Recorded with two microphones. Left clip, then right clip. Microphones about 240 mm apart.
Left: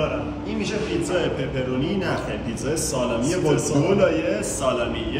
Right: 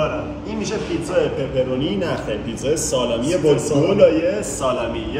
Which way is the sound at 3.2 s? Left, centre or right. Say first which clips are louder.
Right 5 dB; centre.